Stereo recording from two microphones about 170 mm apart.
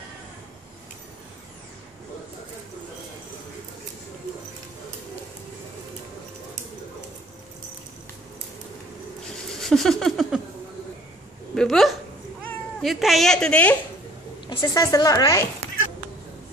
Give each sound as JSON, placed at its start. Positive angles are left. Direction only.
{"t": 9.3, "sound": "a sound", "side_deg": 5}
{"t": 11.5, "sound": "a woman's voice", "side_deg": 0}
{"t": 14.6, "sound": "speech", "side_deg": 20}